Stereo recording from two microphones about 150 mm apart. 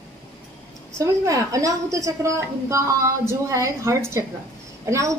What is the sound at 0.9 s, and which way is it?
A woman's voice, 20° right (ahead or behind).